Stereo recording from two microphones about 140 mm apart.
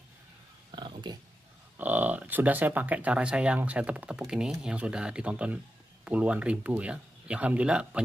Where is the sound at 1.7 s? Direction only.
10° right (ahead or behind).